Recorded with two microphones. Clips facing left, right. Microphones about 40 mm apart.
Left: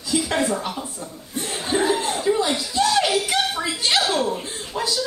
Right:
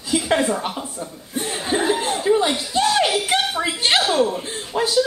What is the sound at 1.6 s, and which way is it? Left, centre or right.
Chuckle, right.